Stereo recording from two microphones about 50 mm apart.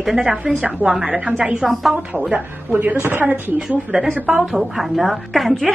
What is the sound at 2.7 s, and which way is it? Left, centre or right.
Speech, right.